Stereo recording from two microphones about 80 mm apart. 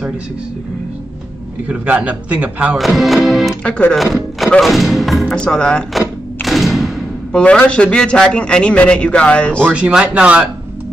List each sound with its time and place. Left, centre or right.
1.7 s a man's voice: centre
2.8 s music: centre
3.6 s a man's voice: centre
3.9 s speech: centre
4.5 s music: centre
5.2 s a man's voice: centre
5.9 s thump: centre
7.3 s a man's voice: centre
9.8 s a man's voice: centre